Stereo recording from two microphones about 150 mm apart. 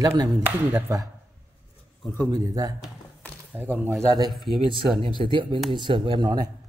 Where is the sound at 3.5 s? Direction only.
10° right (ahead or behind).